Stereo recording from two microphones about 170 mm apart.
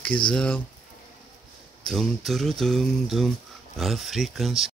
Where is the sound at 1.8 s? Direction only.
Centre (ahead or behind).